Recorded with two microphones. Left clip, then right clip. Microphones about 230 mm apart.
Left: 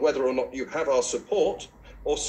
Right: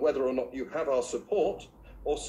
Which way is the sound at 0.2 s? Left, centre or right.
Centre.